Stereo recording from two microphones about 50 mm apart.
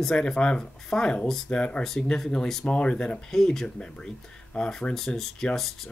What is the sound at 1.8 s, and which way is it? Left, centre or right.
Speech, centre.